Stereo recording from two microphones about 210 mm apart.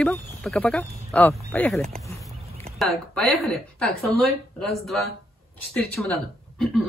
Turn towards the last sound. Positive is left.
turn(degrees=5)  # may be behind; listen again after turning